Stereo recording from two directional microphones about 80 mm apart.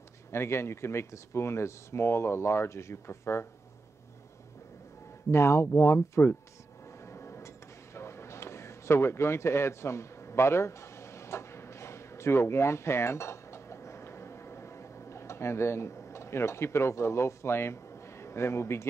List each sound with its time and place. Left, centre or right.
0.3 s speech: left
5.3 s speech: left
6.9 s a sound: left